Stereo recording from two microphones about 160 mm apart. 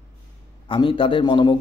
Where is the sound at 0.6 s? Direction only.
30° left (ahead or behind).